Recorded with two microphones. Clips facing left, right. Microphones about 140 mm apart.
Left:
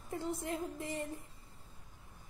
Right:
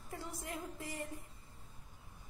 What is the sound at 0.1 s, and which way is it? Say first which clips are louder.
Speech: left 7 dB; 25° left (ahead or behind).